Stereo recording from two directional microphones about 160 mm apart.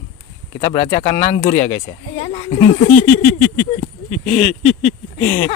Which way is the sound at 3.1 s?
15° left (ahead or behind).